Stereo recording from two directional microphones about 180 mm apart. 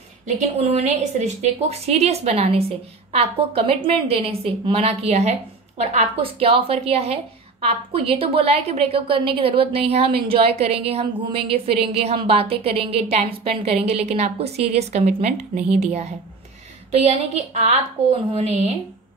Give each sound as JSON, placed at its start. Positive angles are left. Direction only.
{"t": 0.6, "sound": "a woman's voice", "side_deg": -35}